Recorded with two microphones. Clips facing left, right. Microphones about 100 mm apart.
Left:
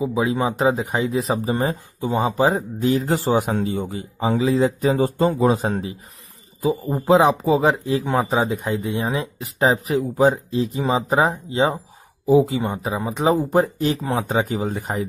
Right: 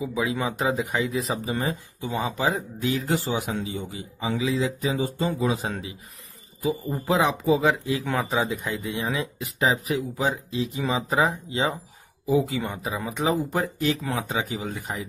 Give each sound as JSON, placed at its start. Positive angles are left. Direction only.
{"t": 0.0, "sound": "speech", "side_deg": 30}